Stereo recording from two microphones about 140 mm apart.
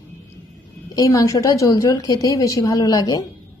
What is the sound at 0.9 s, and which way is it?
A woman's voice, 25° left (ahead or behind).